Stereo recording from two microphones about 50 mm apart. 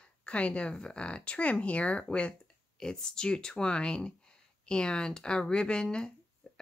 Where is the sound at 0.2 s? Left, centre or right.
Left.